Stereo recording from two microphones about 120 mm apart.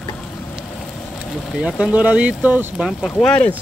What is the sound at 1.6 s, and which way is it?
Speech, 5° right (ahead or behind).